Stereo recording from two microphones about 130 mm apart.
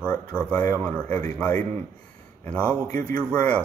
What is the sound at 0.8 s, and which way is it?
Speech, 10° left (ahead or behind).